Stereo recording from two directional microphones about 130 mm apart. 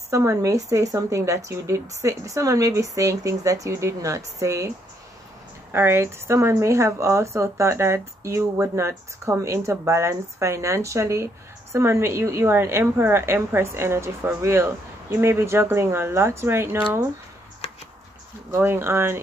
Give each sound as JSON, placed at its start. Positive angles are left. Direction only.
{"t": 0.1, "sound": "speech", "side_deg": -25}
{"t": 18.5, "sound": "speech", "side_deg": -20}